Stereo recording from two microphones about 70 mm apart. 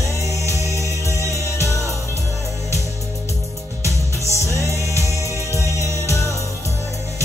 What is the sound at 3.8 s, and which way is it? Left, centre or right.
Music, right.